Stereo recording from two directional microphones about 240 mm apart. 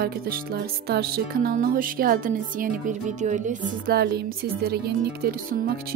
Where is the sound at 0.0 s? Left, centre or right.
Right.